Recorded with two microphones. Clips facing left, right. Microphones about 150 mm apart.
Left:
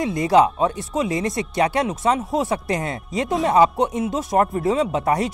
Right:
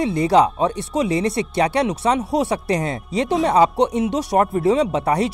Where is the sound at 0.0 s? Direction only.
30° right (ahead or behind).